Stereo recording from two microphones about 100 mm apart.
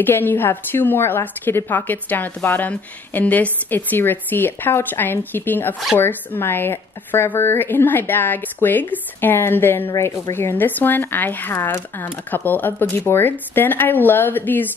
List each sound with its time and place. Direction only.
0.0 s a woman's voice: 20° left (ahead or behind)